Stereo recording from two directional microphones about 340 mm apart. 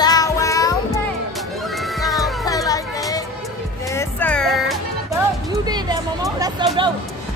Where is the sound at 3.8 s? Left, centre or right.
Centre.